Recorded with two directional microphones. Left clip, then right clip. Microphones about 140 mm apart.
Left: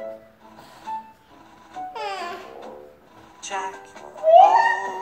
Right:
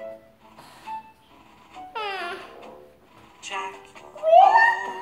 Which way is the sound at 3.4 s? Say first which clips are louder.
Left 3 dB; 35° left (ahead or behind).